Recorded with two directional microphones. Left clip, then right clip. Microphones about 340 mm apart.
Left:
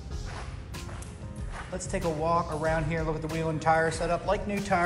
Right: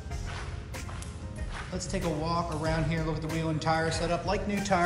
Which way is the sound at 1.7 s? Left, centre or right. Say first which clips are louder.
Left 2 dB; centre.